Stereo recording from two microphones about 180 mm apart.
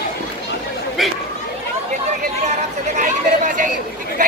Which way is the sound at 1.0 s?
Centre (ahead or behind).